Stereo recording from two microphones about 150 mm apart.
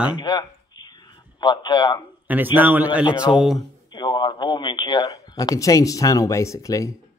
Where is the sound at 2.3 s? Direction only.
10° right (ahead or behind).